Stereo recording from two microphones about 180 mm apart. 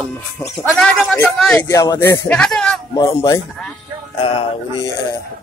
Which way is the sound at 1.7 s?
20° left (ahead or behind).